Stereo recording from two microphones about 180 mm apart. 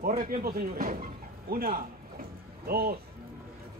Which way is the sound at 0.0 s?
50° right (ahead or behind).